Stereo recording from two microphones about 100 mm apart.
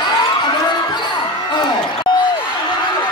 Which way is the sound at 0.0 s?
50° left (ahead or behind).